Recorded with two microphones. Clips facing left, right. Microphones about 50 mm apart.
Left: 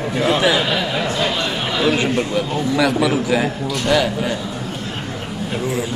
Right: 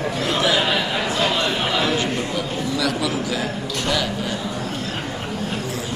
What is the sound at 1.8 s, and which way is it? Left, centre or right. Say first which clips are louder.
A man's voice: left 4 dB; left.